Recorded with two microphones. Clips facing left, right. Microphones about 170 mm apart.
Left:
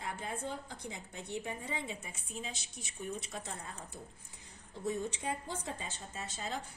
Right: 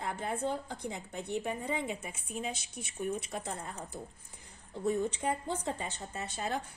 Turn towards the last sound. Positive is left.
turn(degrees=-60)  # may be behind; listen again after turning